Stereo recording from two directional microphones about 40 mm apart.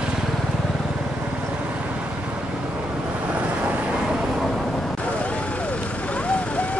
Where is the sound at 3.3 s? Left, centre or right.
Right.